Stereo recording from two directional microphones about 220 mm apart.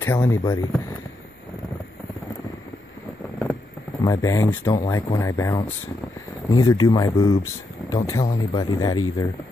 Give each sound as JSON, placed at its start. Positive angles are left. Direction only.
{"t": 0.0, "sound": "speech", "side_deg": 10}
{"t": 4.0, "sound": "speech", "side_deg": 15}